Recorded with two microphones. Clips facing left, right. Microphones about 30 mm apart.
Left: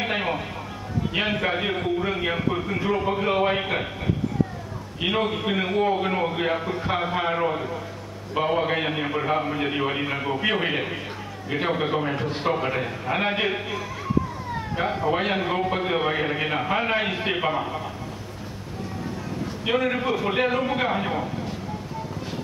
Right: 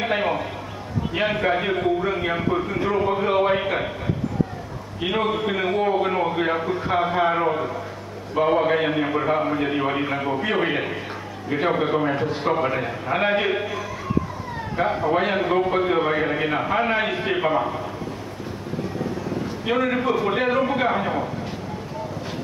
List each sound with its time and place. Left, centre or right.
0.0 s a man's voice: centre
5.0 s a man's voice: centre
5.5 s a man's voice: centre
19.6 s a man's voice: centre